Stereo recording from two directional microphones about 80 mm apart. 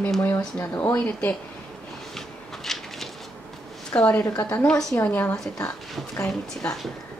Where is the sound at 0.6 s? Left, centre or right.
Left.